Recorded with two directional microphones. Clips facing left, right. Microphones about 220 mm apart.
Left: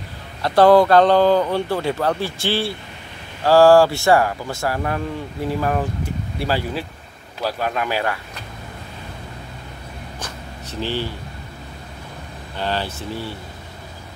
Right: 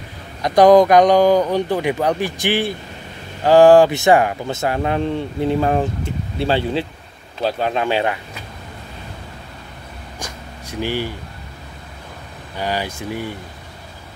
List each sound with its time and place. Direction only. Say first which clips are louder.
0.4 s speech: right 2 dB; 15° right (ahead or behind)
10.1 s a sound: right 3 dB; 10° right (ahead or behind)
12.5 s speech: right 1 dB; 10° right (ahead or behind)